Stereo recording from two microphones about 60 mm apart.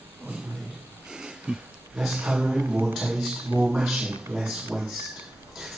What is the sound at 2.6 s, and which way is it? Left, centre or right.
Speech, right.